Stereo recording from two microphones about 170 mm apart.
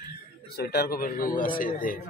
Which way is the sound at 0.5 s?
70° left (ahead or behind).